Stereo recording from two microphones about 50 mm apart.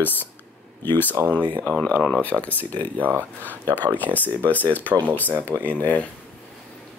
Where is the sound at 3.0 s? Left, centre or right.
Right.